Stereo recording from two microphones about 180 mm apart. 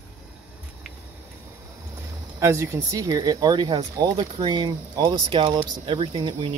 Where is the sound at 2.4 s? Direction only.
15° right (ahead or behind).